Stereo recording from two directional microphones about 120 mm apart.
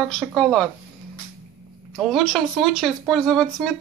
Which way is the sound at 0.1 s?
5° left (ahead or behind).